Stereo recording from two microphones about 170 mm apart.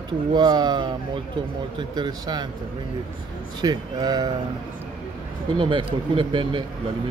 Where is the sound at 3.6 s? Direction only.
25° right (ahead or behind).